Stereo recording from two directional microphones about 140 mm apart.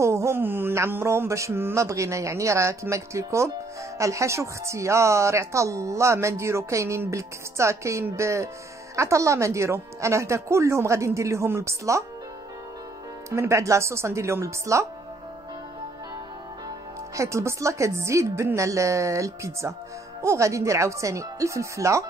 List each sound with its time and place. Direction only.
0.0 s speech: 20° right (ahead or behind)
13.3 s speech: 20° right (ahead or behind)
17.1 s speech: 20° right (ahead or behind)